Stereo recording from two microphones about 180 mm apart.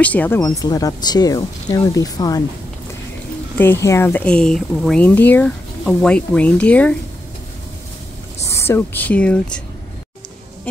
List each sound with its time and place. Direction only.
0.0 s speech: 10° left (ahead or behind)
0.4 s speech: 20° left (ahead or behind)
3.5 s speech: 10° left (ahead or behind)
8.4 s speech: 15° left (ahead or behind)